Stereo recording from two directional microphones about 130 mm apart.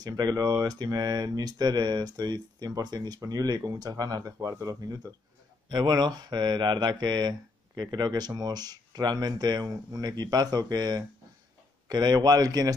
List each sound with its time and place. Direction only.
0.0 s speech: 30° right (ahead or behind)